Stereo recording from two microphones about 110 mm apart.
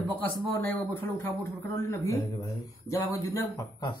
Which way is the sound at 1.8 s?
25° left (ahead or behind).